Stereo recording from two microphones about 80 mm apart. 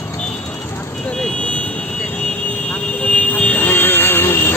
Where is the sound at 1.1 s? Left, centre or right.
Centre.